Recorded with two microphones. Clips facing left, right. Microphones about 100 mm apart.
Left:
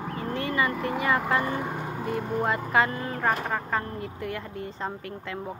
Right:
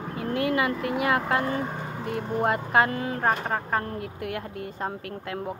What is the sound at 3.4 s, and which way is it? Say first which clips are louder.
Speech: right 1 dB; 35° right (ahead or behind).